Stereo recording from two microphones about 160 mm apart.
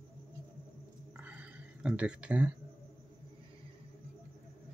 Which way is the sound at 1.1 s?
10° right (ahead or behind).